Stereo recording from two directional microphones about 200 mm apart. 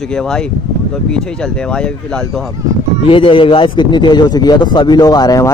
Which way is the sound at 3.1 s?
25° left (ahead or behind).